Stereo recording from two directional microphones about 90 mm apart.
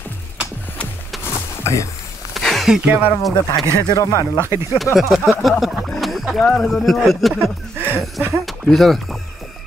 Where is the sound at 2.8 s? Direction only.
20° right (ahead or behind).